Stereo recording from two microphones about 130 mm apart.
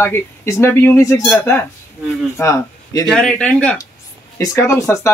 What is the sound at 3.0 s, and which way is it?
Speech, 5° left (ahead or behind).